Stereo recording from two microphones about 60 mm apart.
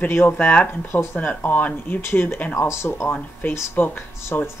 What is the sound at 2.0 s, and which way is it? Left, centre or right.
Speech, left.